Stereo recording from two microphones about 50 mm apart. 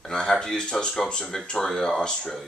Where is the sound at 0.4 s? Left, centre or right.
Centre.